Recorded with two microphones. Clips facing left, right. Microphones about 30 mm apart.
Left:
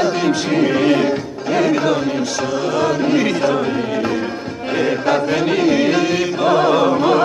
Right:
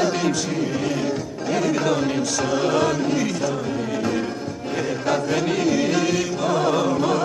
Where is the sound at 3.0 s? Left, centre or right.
Left.